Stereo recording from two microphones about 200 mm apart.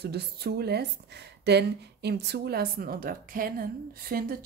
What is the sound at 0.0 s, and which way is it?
Speech, 55° right (ahead or behind).